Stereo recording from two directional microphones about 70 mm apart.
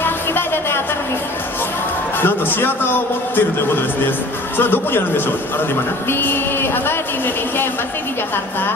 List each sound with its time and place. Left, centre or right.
0.0 s a sound: left
2.1 s a man's voice: left
4.6 s a man's voice: left